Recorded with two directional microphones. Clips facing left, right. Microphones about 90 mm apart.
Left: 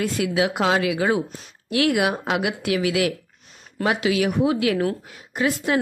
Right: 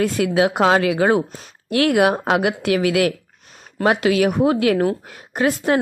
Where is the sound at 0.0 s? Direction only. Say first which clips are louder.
Right 4 dB; 45° right (ahead or behind).